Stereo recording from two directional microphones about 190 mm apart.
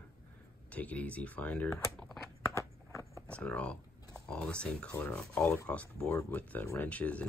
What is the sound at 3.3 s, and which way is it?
Speech, 5° left (ahead or behind).